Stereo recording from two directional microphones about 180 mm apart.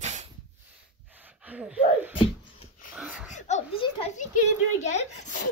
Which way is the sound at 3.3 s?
35° left (ahead or behind).